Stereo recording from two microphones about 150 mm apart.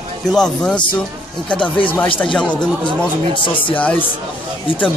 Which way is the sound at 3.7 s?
10° left (ahead or behind).